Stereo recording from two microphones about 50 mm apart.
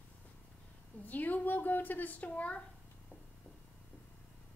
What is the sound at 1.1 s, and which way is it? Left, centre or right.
A woman's voice, left.